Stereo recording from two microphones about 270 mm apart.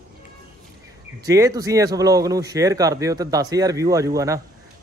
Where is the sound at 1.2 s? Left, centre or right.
Centre.